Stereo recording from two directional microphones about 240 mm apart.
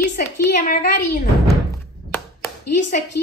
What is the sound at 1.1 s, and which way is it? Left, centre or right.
Speech, left.